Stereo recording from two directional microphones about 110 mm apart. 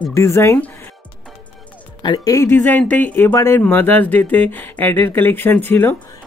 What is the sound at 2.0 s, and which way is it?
Speech, 45° left (ahead or behind).